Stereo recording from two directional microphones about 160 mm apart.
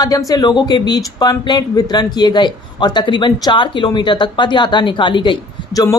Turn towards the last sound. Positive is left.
turn(degrees=20)  # may be behind; listen again after turning